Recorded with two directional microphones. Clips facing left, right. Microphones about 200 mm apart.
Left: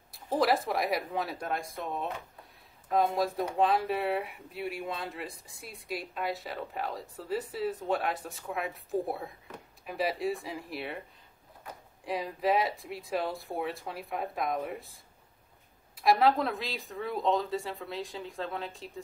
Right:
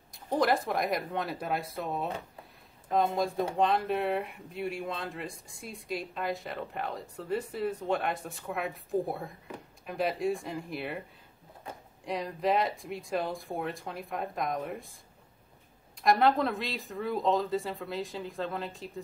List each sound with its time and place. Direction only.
0.1 s speech: centre (ahead or behind)
11.7 s a sound: 25° right (ahead or behind)
12.0 s speech: 5° left (ahead or behind)
16.0 s speech: centre (ahead or behind)